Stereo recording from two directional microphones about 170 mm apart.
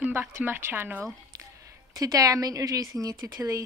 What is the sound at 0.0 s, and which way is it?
Speech, 10° right (ahead or behind).